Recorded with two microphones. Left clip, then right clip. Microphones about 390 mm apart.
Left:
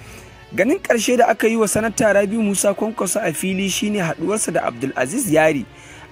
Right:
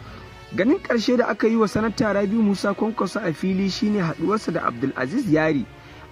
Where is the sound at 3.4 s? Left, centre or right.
Left.